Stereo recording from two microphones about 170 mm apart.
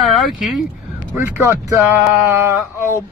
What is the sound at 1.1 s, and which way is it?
Speech, 15° right (ahead or behind).